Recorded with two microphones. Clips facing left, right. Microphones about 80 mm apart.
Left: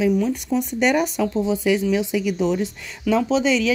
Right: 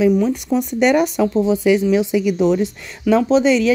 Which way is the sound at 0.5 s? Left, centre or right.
Right.